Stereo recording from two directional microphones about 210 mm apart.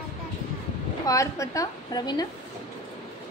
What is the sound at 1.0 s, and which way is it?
A woman's voice, 15° left (ahead or behind).